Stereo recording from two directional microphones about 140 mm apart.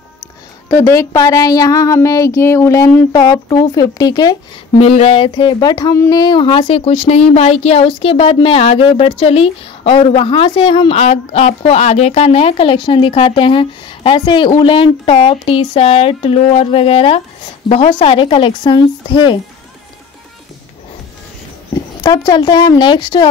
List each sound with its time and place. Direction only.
0.7 s speech: 20° left (ahead or behind)
4.7 s a woman's voice: 45° left (ahead or behind)
22.0 s speech: 25° left (ahead or behind)